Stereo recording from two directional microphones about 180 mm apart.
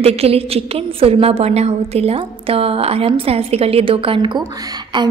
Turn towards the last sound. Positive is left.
turn(degrees=-25)  # may be behind; listen again after turning